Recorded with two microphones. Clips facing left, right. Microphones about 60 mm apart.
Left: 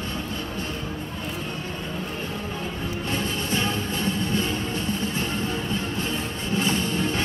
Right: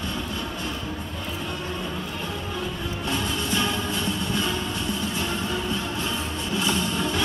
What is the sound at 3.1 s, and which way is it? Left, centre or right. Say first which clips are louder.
Music: right 1 dB; left.